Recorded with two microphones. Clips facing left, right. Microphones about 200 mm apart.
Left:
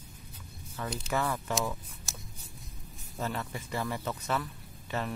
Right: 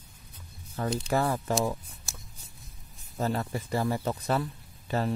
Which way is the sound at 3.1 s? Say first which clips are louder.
Right 6 dB; 35° right (ahead or behind).